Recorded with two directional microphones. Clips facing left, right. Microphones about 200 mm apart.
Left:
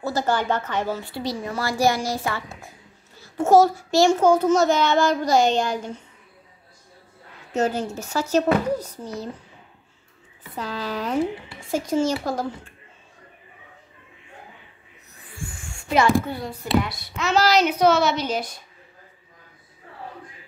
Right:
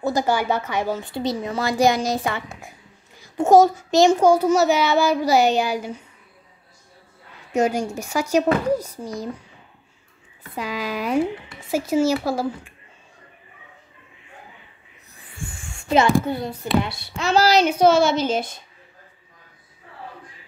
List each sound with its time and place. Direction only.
0.0 s a woman's voice: 15° right (ahead or behind)
7.5 s a child's voice: 10° right (ahead or behind)
10.5 s a child's voice: 10° right (ahead or behind)
15.9 s a woman's voice: 25° right (ahead or behind)